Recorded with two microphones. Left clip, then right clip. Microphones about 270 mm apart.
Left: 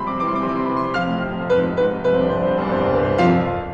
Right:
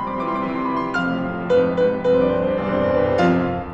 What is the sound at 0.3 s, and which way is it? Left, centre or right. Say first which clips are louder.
Music: left 2 dB; centre.